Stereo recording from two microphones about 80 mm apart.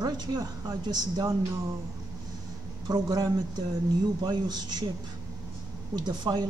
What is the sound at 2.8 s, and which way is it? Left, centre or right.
Speech, right.